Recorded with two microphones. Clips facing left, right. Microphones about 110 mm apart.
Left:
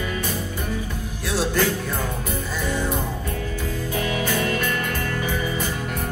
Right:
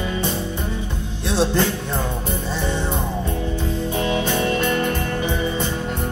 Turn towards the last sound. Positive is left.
turn(degrees=-25)  # may be behind; listen again after turning